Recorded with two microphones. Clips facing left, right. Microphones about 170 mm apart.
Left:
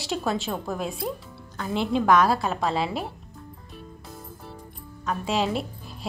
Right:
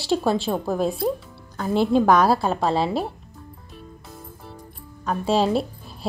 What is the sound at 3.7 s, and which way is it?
Music, centre (ahead or behind).